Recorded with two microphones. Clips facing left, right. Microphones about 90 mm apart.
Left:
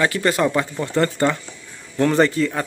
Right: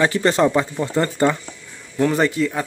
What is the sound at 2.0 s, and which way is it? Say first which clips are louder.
Speech: left 1 dB; 5° right (ahead or behind).